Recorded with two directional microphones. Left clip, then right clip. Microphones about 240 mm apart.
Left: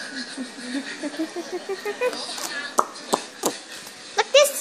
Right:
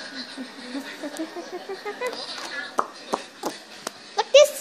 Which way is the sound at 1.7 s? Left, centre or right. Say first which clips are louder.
Left 5 dB; centre.